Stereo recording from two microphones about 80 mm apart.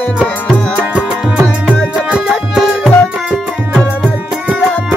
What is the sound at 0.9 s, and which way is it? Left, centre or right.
Music, centre.